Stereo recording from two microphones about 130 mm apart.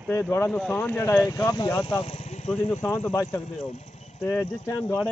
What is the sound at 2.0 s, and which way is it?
Vehicle, 55° left (ahead or behind).